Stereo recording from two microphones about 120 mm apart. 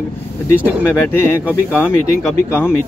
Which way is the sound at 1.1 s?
20° left (ahead or behind).